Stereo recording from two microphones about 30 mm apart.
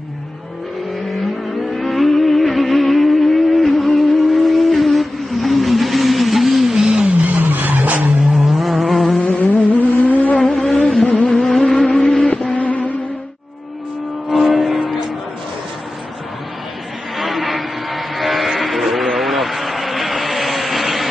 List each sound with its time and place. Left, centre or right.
1.7 s music: centre
7.2 s vehicle: right
8.5 s vehicle: centre
9.2 s vehicle: left
10.6 s a sound: left
10.9 s vehicle: left
11.4 s vehicle: centre
12.5 s a sound: left
14.3 s vehicle: centre
17.2 s vehicle: centre